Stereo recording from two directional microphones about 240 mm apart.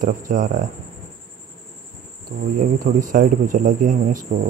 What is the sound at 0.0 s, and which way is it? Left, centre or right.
Speech, right.